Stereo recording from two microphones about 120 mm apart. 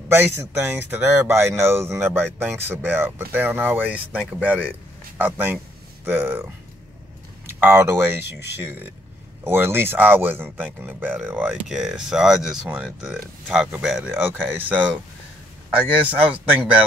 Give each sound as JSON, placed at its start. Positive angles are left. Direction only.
{"t": 0.1, "sound": "speech", "side_deg": -20}
{"t": 11.7, "sound": "speech", "side_deg": -5}
{"t": 14.5, "sound": "speech", "side_deg": -15}
{"t": 15.8, "sound": "speech", "side_deg": -10}